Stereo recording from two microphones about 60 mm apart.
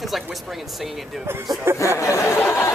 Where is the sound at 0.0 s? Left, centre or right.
Centre.